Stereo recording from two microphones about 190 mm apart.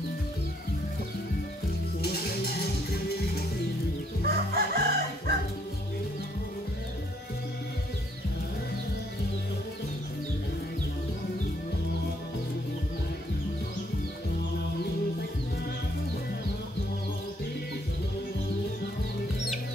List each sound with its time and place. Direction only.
2.0 s music: 55° left (ahead or behind)
4.2 s crowing: 55° right (ahead or behind)